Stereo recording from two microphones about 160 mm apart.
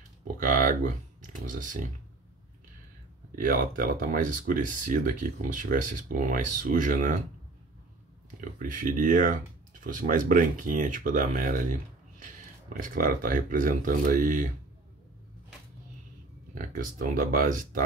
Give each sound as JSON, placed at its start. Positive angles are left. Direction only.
{"t": 0.4, "sound": "speech", "side_deg": -60}
{"t": 3.3, "sound": "speech", "side_deg": -60}
{"t": 8.4, "sound": "speech", "side_deg": -55}
{"t": 12.8, "sound": "speech", "side_deg": -60}
{"t": 16.5, "sound": "speech", "side_deg": -60}